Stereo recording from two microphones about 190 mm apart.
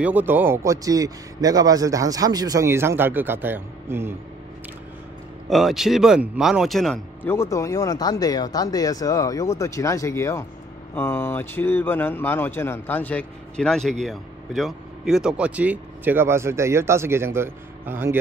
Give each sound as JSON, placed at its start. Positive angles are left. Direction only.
{"t": 0.0, "sound": "a man's voice", "side_deg": -10}
{"t": 5.5, "sound": "speech", "side_deg": 0}
{"t": 7.2, "sound": "a man's voice", "side_deg": 15}